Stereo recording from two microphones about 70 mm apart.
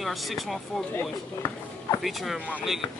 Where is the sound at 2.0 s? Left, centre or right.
Centre.